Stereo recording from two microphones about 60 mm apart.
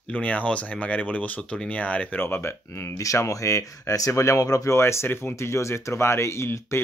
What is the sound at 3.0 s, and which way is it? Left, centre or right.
Speech, left.